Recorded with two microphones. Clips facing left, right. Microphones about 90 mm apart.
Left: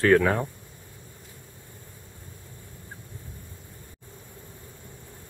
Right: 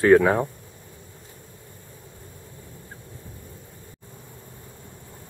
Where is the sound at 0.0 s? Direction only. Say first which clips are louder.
Right 4 dB; 15° right (ahead or behind).